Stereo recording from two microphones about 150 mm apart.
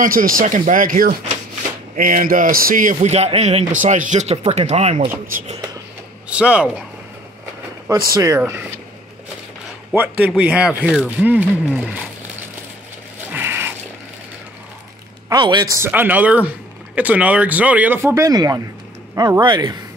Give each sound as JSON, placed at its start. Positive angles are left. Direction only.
{"t": 0.0, "sound": "a man's voice", "side_deg": -70}
{"t": 3.7, "sound": "speech", "side_deg": -60}
{"t": 6.2, "sound": "a man's voice", "side_deg": -5}
{"t": 7.9, "sound": "speech", "side_deg": -20}
{"t": 8.4, "sound": "a man's voice", "side_deg": -10}
{"t": 9.9, "sound": "a man's voice", "side_deg": -10}
{"t": 13.3, "sound": "mechanisms", "side_deg": -15}
{"t": 15.2, "sound": "a man's voice", "side_deg": -30}